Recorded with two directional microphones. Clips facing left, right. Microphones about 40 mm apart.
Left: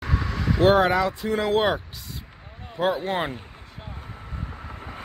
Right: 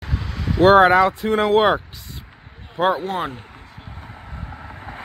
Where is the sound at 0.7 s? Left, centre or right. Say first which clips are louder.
Right 7 dB; right.